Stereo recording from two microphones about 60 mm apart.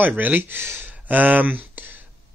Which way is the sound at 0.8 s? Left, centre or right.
Right.